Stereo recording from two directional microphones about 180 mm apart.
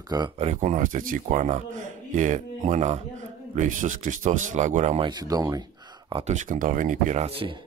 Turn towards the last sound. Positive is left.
turn(degrees=-35)  # may be behind; listen again after turning